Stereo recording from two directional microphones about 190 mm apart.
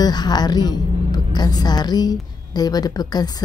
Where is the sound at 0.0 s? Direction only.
20° left (ahead or behind).